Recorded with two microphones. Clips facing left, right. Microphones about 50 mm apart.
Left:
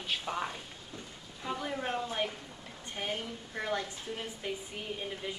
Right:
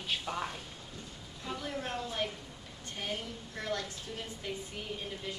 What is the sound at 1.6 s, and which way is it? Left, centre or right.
A woman's voice, centre.